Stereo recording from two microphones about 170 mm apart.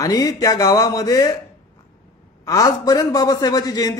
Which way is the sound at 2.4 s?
20° left (ahead or behind).